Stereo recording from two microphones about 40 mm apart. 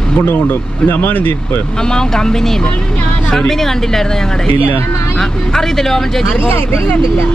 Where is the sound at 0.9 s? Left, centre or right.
Left.